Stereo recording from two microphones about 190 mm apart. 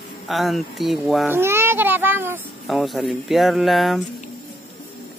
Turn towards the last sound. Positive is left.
turn(degrees=0)  # may be behind; listen again after turning